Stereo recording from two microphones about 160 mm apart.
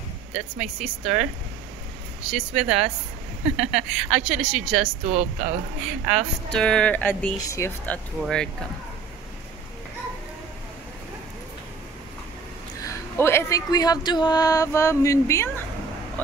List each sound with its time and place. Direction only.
0.3 s a woman's voice: 5° right (ahead or behind)
2.3 s a woman's voice: 5° right (ahead or behind)
5.0 s speech: 45° right (ahead or behind)
6.5 s a woman's voice: 5° left (ahead or behind)
12.8 s speech: 15° left (ahead or behind)